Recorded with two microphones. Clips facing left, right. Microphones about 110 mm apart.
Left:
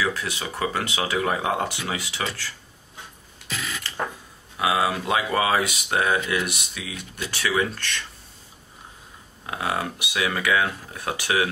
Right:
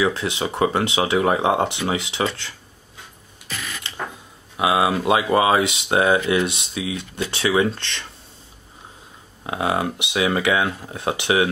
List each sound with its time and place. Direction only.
0.0 s speech: 25° right (ahead or behind)
4.6 s speech: 20° right (ahead or behind)
9.5 s speech: 25° right (ahead or behind)